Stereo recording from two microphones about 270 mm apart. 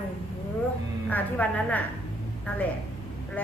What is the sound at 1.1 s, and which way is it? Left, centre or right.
Speech, centre.